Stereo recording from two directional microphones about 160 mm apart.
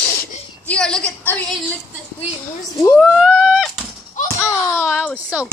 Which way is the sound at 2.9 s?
5° right (ahead or behind).